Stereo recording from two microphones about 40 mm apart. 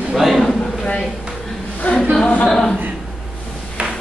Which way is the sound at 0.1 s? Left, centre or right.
Centre.